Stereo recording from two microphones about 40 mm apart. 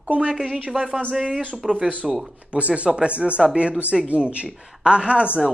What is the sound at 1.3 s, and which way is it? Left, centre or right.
Speech, left.